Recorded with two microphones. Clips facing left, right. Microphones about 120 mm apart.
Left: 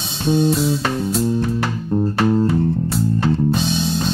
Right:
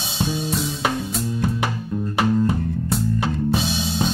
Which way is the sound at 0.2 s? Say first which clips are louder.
Left 8 dB; centre (ahead or behind).